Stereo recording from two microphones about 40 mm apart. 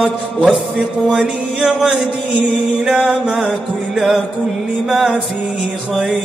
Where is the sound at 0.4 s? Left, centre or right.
Right.